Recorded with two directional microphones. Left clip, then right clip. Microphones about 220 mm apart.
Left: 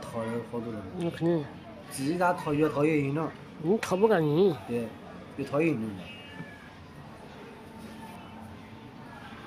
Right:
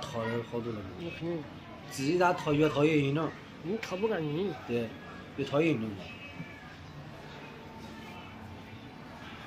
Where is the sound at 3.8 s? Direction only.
50° left (ahead or behind).